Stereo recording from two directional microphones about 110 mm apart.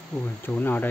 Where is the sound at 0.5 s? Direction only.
15° left (ahead or behind).